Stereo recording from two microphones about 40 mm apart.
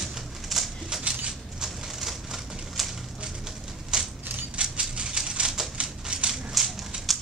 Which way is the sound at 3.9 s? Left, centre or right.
Centre.